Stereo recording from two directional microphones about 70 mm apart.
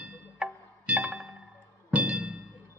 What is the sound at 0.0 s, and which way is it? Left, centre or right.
Music, centre.